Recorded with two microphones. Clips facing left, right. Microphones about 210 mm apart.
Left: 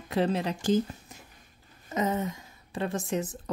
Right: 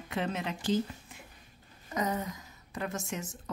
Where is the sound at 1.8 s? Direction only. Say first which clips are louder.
Left 4 dB; 25° left (ahead or behind).